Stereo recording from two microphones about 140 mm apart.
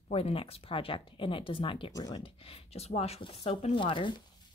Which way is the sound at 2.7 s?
45° left (ahead or behind).